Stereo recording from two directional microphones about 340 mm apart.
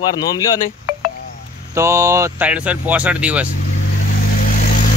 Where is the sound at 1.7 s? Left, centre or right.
Centre.